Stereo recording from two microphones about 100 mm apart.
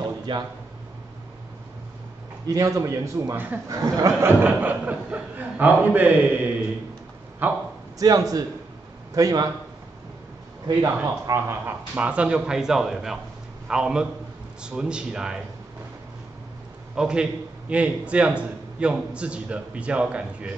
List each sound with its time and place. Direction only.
0.3 s speech: 55° right (ahead or behind)
2.4 s a man's voice: 35° right (ahead or behind)
4.2 s a man's voice: 20° right (ahead or behind)
8.0 s a man's voice: 35° right (ahead or behind)
10.8 s speech: 30° right (ahead or behind)
12.0 s a man's voice: 15° right (ahead or behind)
16.9 s a man's voice: 10° right (ahead or behind)